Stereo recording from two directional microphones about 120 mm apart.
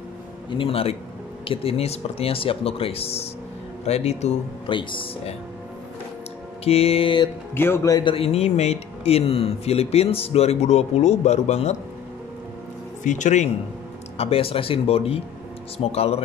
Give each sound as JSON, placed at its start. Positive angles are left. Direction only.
{"t": 0.6, "sound": "speech", "side_deg": 50}
{"t": 4.6, "sound": "speech", "side_deg": 45}
{"t": 6.6, "sound": "speech", "side_deg": 55}
{"t": 7.5, "sound": "speech", "side_deg": 20}
{"t": 7.9, "sound": "speech", "side_deg": 45}
{"t": 13.0, "sound": "speech", "side_deg": 90}
{"t": 14.1, "sound": "speech", "side_deg": 55}